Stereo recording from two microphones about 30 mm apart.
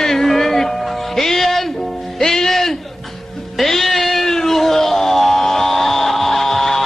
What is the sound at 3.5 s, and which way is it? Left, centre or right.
Cat, centre.